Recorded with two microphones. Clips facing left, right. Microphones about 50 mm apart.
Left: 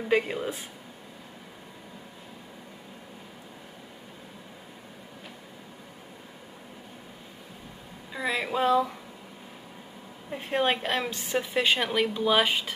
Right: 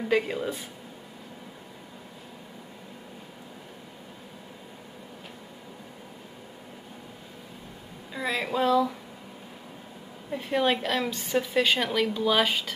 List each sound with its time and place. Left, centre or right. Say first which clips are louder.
0.1 s a woman's voice: left 1 dB; centre
8.1 s speech: even; centre
8.6 s a woman's voice: even; left
10.3 s a woman's voice: right 1 dB; centre